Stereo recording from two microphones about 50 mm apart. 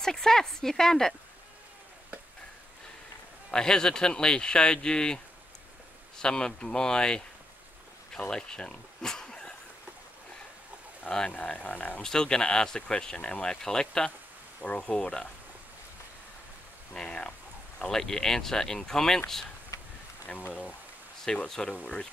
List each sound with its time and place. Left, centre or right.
0.0 s speech: centre
3.5 s speech: centre
11.1 s speech: centre
11.3 s speech: left
12.0 s speech: centre
14.6 s speech: left
16.9 s speech: centre
21.3 s speech: centre
21.6 s speech: left